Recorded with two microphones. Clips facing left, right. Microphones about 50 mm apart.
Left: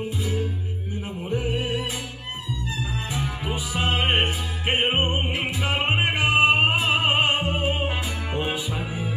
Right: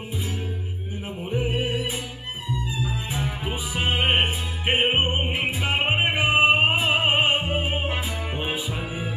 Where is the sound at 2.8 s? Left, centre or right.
Centre.